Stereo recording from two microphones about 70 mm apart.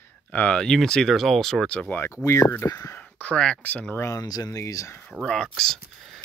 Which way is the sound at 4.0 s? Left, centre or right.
Left.